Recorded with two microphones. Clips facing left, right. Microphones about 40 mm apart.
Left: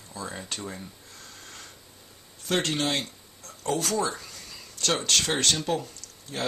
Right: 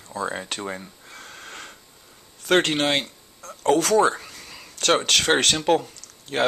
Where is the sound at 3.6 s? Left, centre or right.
Right.